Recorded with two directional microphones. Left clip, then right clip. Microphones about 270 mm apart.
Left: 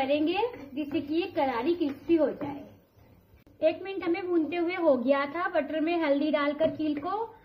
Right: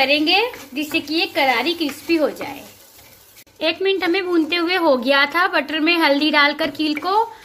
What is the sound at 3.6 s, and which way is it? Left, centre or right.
A woman's voice, right.